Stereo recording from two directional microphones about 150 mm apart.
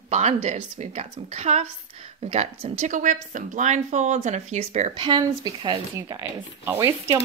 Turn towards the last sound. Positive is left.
turn(degrees=-20)  # may be behind; listen again after turning